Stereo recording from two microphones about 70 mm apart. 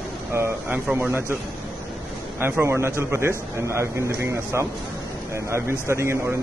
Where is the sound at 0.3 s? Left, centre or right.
Right.